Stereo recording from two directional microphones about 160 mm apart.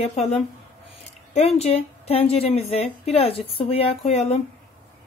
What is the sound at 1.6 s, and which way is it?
A woman's voice, 40° left (ahead or behind).